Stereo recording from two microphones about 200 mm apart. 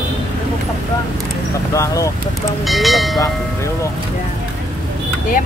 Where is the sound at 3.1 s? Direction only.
15° left (ahead or behind).